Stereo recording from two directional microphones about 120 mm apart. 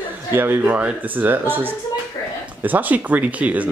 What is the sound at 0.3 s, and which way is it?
Speech, 20° right (ahead or behind).